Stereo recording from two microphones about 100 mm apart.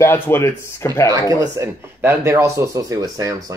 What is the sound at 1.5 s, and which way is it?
Speech, 25° right (ahead or behind).